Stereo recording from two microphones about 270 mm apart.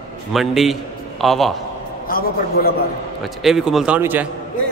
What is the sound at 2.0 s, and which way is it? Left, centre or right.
Speech, left.